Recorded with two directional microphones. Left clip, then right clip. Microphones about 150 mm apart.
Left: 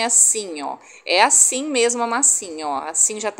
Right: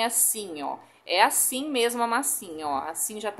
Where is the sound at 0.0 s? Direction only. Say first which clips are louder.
Left 8 dB; 30° left (ahead or behind).